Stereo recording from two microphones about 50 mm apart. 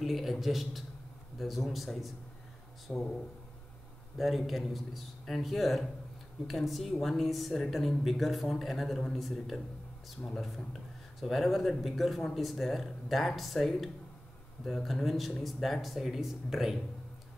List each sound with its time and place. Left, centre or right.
0.0 s a woman's voice: centre
2.9 s speech: left
4.2 s a woman's voice: centre